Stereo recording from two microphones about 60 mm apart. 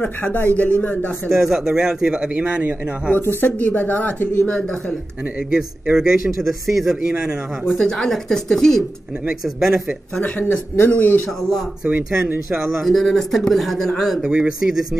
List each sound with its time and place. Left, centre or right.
0.0 s speech: left
1.3 s a man's voice: centre
3.2 s a man's voice: left
3.5 s speech: left
4.5 s speech: centre
5.5 s a man's voice: centre
7.8 s speech: centre
9.4 s speech: centre
10.8 s a man's voice: left
12.6 s speech: centre
14.2 s a man's voice: centre